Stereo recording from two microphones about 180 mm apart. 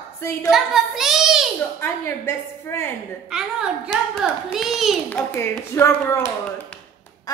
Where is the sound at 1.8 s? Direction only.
15° left (ahead or behind).